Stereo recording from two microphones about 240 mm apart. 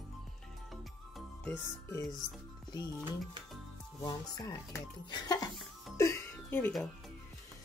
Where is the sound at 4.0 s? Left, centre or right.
Centre.